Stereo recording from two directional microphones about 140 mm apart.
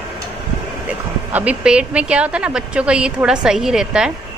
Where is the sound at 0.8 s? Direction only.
10° right (ahead or behind).